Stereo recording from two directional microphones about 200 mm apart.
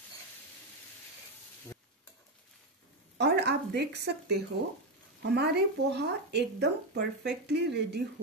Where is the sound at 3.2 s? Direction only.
60° right (ahead or behind).